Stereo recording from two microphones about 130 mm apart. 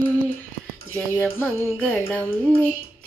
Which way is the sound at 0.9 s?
10° left (ahead or behind).